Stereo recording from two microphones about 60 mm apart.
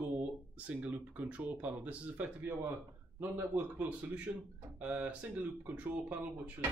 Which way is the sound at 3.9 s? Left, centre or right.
Right.